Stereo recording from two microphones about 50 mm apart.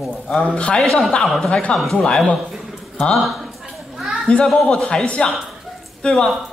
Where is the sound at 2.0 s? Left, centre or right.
Centre.